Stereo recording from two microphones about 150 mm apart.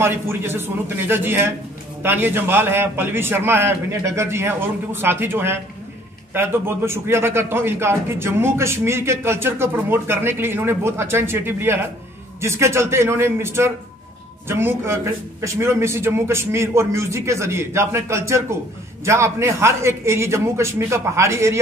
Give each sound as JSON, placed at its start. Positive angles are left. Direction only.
{"t": 0.0, "sound": "a man's voice", "side_deg": -15}